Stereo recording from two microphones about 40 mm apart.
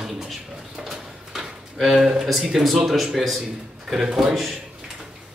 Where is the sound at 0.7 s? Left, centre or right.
Centre.